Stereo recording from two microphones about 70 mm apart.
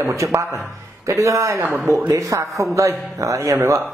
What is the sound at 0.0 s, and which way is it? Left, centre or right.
Speech, right.